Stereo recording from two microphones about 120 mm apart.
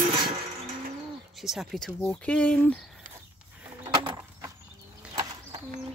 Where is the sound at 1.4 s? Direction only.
Centre (ahead or behind).